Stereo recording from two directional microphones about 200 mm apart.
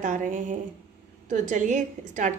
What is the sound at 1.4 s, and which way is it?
Speech, 40° right (ahead or behind).